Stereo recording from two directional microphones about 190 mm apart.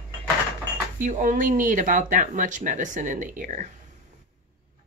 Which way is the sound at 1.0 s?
45° right (ahead or behind).